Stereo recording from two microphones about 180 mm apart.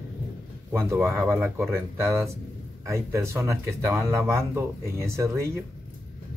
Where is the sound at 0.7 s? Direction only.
10° right (ahead or behind).